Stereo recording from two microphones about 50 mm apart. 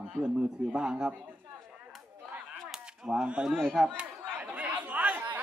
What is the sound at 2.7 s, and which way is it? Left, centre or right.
Cap gun, centre.